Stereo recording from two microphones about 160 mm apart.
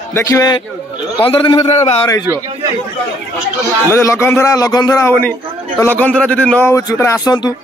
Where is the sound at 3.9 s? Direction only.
15° left (ahead or behind).